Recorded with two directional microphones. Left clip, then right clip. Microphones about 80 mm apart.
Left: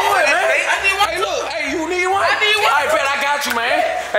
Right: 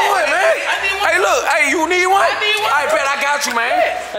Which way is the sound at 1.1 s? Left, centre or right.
Right.